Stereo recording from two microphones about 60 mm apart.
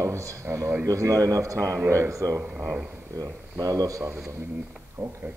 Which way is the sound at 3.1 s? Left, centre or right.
Right.